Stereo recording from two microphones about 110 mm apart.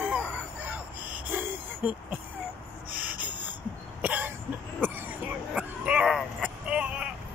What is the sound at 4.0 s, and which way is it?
Cough, 15° right (ahead or behind).